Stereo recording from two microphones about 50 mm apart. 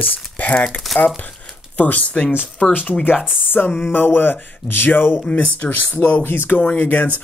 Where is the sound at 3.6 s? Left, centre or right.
Left.